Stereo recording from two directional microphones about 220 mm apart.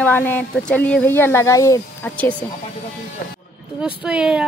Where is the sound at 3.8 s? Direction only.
5° right (ahead or behind).